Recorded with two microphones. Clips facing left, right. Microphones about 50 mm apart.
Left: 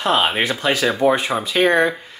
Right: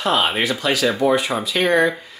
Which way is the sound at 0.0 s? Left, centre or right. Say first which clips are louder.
Left 1 dB; left.